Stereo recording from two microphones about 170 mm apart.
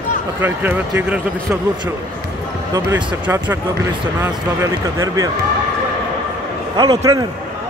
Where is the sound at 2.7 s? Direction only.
15° right (ahead or behind).